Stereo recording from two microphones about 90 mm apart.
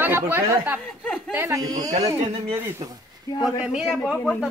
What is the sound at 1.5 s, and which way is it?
Speech, 40° right (ahead or behind).